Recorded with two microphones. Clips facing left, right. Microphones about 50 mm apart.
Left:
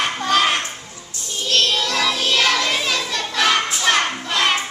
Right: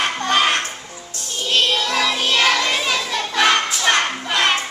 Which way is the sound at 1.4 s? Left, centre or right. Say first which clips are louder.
Right 1 dB; centre.